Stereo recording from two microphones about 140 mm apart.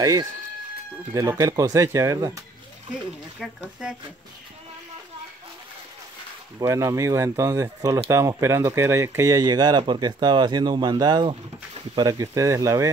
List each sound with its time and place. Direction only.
0.0 s speech: 25° right (ahead or behind)
3.3 s speech: 5° right (ahead or behind)
6.6 s speech: 20° right (ahead or behind)